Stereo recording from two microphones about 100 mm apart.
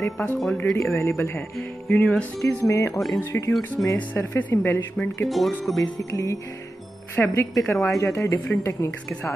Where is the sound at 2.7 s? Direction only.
30° left (ahead or behind).